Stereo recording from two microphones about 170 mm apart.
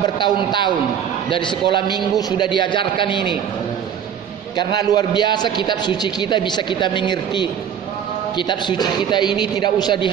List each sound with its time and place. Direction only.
0.0 s a man's voice: 25° left (ahead or behind)
4.6 s a man's voice: 25° left (ahead or behind)